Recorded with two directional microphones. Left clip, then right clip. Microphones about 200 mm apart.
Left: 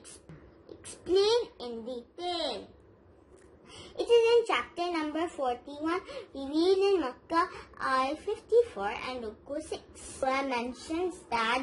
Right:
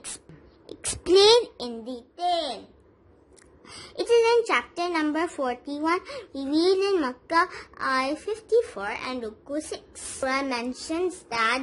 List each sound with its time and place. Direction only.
0.7 s child singing: 60° right (ahead or behind)
3.6 s a child's voice: 55° right (ahead or behind)